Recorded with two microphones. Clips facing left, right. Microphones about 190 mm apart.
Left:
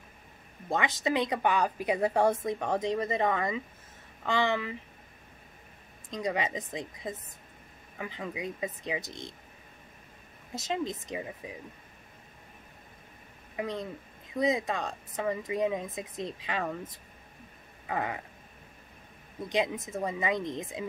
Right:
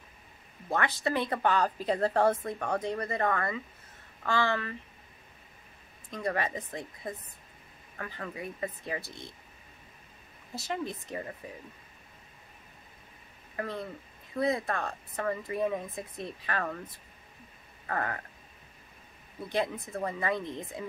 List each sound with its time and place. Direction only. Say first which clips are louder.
0.7 s a woman's voice: left 1 dB; 15° left (ahead or behind)
6.0 s a woman's voice: left 1 dB; 15° left (ahead or behind)
10.5 s speech: left 2 dB; 20° left (ahead or behind)
13.6 s a woman's voice: left 2 dB; 15° left (ahead or behind)
17.8 s a woman's voice: left 1 dB; 10° left (ahead or behind)
19.5 s a woman's voice: left 1 dB; 15° left (ahead or behind)